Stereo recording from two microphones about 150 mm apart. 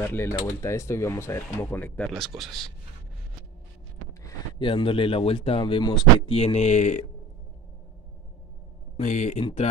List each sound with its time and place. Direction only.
0.0 s speech: 15° left (ahead or behind)
4.6 s speech: 35° left (ahead or behind); by 7.1 s 50° left (ahead or behind)
8.9 s speech: 55° left (ahead or behind)
9.4 s speech: 40° left (ahead or behind)